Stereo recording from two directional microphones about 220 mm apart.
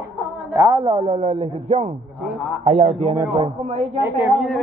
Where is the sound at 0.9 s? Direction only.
25° right (ahead or behind).